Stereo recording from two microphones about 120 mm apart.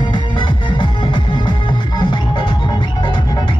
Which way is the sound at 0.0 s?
40° left (ahead or behind).